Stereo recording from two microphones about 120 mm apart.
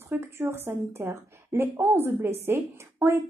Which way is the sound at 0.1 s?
20° right (ahead or behind).